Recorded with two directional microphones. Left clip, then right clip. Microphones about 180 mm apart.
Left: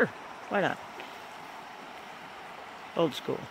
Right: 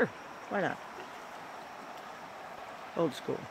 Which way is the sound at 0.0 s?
15° left (ahead or behind).